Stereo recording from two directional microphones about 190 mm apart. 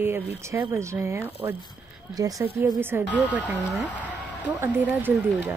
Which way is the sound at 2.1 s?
20° right (ahead or behind).